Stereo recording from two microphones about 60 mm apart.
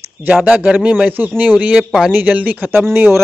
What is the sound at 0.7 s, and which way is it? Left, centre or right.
Speech, right.